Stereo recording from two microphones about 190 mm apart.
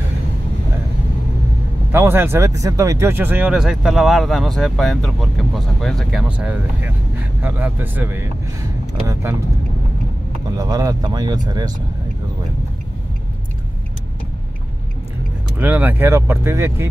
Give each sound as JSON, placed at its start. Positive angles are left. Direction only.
{"t": 1.9, "sound": "speech", "side_deg": -10}
{"t": 10.5, "sound": "speech", "side_deg": -20}
{"t": 15.6, "sound": "speech", "side_deg": -10}